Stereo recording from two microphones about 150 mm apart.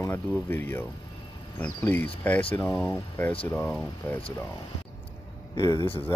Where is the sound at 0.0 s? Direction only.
15° left (ahead or behind).